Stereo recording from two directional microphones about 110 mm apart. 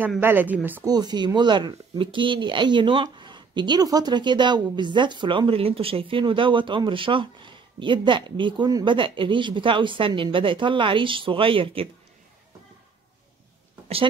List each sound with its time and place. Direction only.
0.2 s a woman's voice: 20° right (ahead or behind)
0.8 s speech: 40° right (ahead or behind)
8.6 s speech: 35° right (ahead or behind)
8.9 s speech: 50° right (ahead or behind)